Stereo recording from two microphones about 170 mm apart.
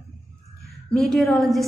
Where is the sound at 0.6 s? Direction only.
Centre (ahead or behind).